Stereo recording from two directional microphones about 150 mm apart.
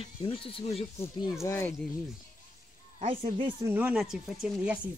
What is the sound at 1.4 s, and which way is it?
Speech, 15° left (ahead or behind).